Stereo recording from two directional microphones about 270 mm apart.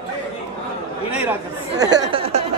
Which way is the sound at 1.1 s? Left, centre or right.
Centre.